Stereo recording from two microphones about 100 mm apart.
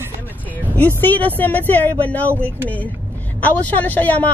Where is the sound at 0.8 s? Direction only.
20° left (ahead or behind).